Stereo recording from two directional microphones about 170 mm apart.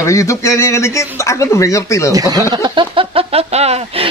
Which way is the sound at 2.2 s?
20° right (ahead or behind).